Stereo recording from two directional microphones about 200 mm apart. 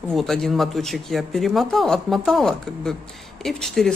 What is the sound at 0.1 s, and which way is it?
Speech, centre (ahead or behind).